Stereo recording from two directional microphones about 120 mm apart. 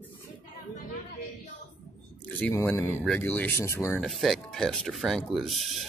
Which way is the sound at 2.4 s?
15° left (ahead or behind).